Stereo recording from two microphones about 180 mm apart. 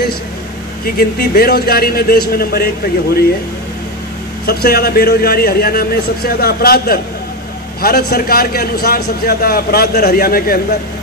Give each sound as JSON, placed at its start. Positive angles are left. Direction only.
{"t": 0.8, "sound": "a man's voice", "side_deg": 55}
{"t": 4.5, "sound": "a man's voice", "side_deg": 60}